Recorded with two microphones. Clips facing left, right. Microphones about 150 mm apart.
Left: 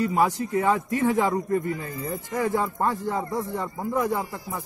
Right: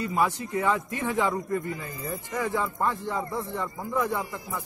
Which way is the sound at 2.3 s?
40° left (ahead or behind).